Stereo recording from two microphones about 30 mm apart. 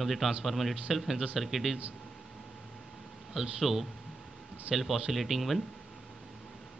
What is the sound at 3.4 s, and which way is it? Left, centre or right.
Speech, centre.